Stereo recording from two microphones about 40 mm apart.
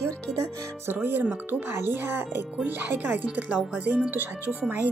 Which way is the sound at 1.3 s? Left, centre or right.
Right.